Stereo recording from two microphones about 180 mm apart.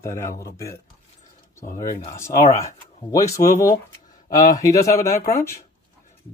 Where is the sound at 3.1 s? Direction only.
20° left (ahead or behind).